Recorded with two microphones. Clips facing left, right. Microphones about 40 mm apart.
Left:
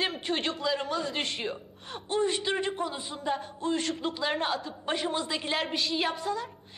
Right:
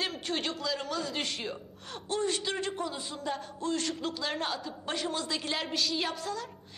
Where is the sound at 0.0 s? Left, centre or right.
Centre.